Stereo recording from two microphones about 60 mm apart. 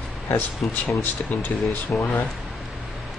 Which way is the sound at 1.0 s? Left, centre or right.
Left.